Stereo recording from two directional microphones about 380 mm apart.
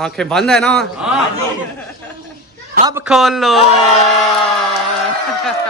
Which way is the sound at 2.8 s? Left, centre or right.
Centre.